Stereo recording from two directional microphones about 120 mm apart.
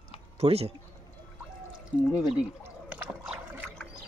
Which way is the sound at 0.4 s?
55° right (ahead or behind).